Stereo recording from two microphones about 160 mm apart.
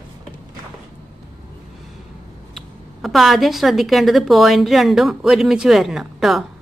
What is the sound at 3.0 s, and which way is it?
A woman's voice, centre (ahead or behind).